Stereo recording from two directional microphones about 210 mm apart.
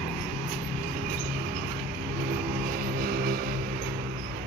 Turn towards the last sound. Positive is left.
turn(degrees=-45)  # may be behind; listen again after turning